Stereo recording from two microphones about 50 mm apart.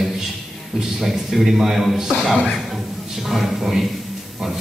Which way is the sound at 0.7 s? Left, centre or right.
Centre.